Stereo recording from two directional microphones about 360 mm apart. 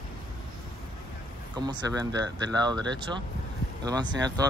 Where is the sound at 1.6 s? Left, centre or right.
Centre.